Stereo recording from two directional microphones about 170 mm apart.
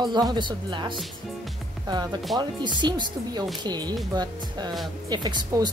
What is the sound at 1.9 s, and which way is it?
Speech, 25° right (ahead or behind).